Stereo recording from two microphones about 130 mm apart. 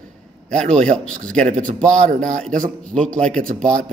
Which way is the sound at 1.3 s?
70° right (ahead or behind).